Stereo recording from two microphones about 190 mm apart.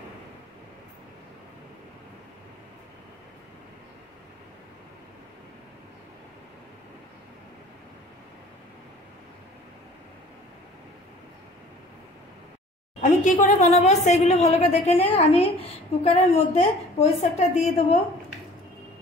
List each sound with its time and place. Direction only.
13.0 s a woman's voice: 40° left (ahead or behind)